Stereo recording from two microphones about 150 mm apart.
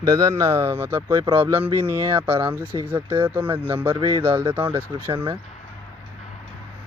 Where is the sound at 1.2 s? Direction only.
40° right (ahead or behind).